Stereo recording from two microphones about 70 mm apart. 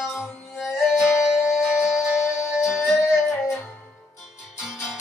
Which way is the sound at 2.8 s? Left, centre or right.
Left.